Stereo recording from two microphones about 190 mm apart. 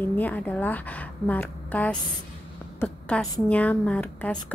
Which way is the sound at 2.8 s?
5° left (ahead or behind).